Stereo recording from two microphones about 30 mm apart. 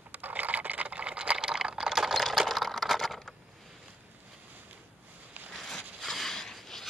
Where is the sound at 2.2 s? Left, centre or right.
Centre.